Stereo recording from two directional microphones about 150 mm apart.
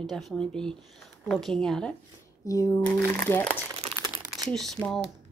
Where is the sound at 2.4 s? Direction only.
20° left (ahead or behind).